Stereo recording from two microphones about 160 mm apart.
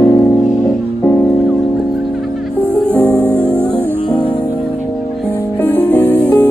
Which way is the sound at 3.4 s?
15° right (ahead or behind).